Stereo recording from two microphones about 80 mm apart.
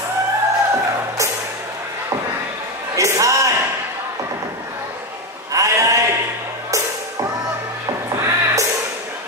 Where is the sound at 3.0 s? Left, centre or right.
Right.